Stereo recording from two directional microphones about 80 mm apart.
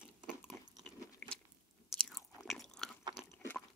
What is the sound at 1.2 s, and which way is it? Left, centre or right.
Biting, left.